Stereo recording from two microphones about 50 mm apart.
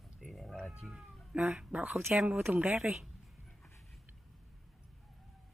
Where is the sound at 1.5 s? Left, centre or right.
Centre.